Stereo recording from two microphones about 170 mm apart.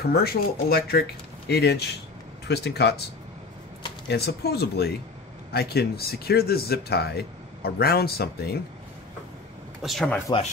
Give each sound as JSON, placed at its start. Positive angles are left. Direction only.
{"t": 0.0, "sound": "speech", "side_deg": 65}
{"t": 1.5, "sound": "speech", "side_deg": 75}
{"t": 4.1, "sound": "speech", "side_deg": 70}
{"t": 9.8, "sound": "speech", "side_deg": 0}